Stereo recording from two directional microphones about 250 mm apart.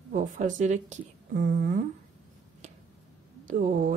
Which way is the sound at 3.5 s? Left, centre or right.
Right.